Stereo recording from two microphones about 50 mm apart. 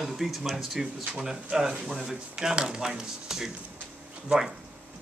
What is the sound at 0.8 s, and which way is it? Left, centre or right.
Speech, centre.